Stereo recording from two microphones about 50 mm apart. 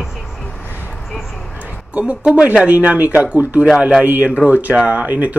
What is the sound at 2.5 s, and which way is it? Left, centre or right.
Speech, right.